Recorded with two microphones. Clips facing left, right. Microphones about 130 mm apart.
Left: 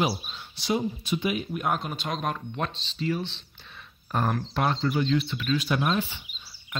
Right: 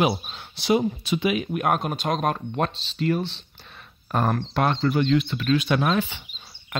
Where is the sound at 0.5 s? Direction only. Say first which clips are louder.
Right 6 dB; 75° right (ahead or behind); by 3.2 s 60° right (ahead or behind).